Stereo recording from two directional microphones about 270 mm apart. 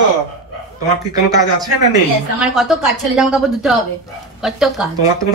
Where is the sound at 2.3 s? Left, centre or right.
Centre.